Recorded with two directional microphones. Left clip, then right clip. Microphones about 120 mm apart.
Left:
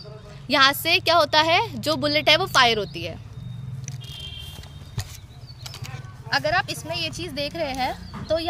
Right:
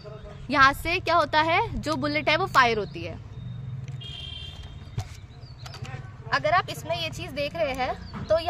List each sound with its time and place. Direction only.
0.5 s a woman's voice: 35° left (ahead or behind)
6.2 s a woman's voice: 20° right (ahead or behind); by 7.9 s 40° right (ahead or behind)